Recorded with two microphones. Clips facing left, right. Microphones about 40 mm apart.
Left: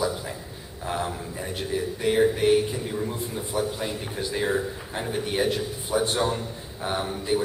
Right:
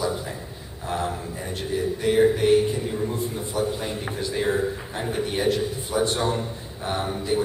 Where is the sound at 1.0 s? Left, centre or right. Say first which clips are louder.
Right 2 dB; centre.